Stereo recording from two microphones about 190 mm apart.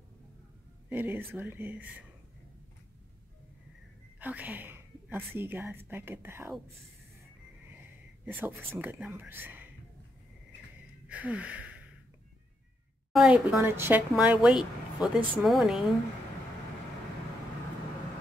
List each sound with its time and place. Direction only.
0.8 s speech: 10° right (ahead or behind)
4.2 s speech: 10° right (ahead or behind)
8.3 s speech: 10° right (ahead or behind)
11.1 s a sound: 5° right (ahead or behind)
13.1 s a woman's voice: 5° right (ahead or behind)